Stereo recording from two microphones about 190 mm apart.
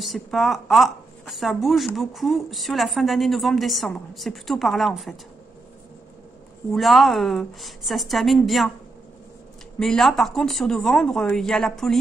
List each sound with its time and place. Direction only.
0.0 s a woman's voice: centre (ahead or behind)
6.7 s a woman's voice: centre (ahead or behind)
9.8 s a woman's voice: centre (ahead or behind)